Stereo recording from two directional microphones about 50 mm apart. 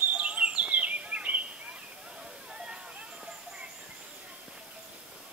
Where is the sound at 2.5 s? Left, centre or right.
Centre.